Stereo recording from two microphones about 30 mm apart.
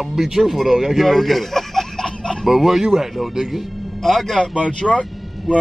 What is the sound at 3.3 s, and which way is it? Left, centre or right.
Speech, centre.